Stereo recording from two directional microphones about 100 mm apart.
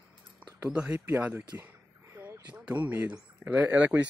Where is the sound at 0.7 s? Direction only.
15° right (ahead or behind).